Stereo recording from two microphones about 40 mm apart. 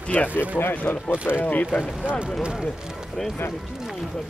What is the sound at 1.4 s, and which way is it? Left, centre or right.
Speech, left.